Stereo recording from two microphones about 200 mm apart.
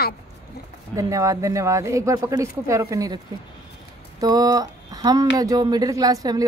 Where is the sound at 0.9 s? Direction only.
15° right (ahead or behind).